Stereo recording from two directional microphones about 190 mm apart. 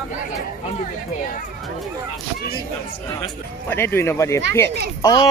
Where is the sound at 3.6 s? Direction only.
10° left (ahead or behind).